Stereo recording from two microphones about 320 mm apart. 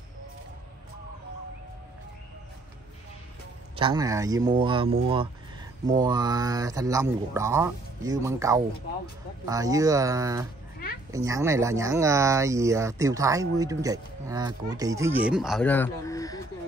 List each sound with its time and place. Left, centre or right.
3.7 s speech: centre